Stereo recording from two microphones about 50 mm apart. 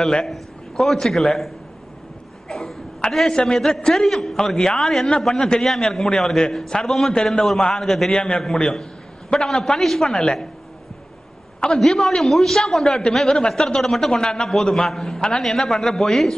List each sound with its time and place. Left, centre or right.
0.1 s a man's voice: centre
2.4 s cough: centre
3.1 s a man's voice: centre
11.6 s a man's voice: centre
15.1 s a man's voice: centre
15.4 s a man's voice: centre